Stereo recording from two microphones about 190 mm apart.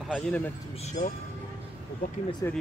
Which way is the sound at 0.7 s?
35° left (ahead or behind).